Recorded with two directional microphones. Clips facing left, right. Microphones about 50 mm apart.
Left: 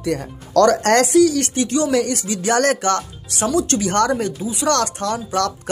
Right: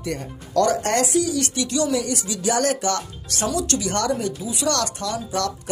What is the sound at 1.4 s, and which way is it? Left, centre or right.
Speech, left.